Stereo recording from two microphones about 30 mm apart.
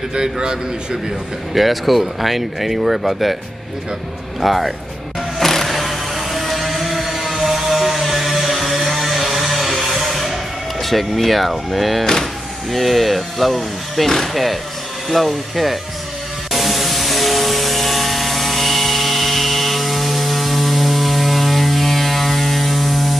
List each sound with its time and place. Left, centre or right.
0.1 s a man's voice: right
1.5 s speech: centre
4.4 s speech: centre
5.4 s vehicle: centre
10.8 s speech: centre
12.0 s speech: centre
12.7 s speech: centre
16.5 s aircraft: centre